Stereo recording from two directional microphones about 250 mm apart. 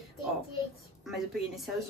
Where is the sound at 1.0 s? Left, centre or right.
Centre.